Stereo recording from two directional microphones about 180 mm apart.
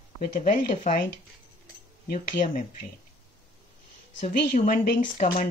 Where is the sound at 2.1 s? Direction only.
50° left (ahead or behind).